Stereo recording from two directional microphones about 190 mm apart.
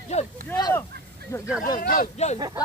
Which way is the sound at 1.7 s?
45° left (ahead or behind).